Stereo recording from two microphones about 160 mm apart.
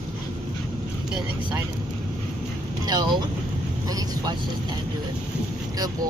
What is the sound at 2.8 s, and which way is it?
Speech, 25° right (ahead or behind).